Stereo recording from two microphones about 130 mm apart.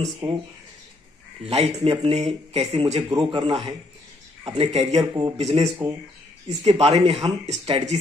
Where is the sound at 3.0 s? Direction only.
35° right (ahead or behind).